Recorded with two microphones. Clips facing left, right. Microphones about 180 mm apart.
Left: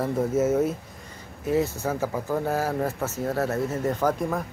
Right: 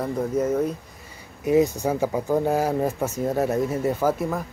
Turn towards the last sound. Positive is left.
turn(degrees=-5)  # may be behind; listen again after turning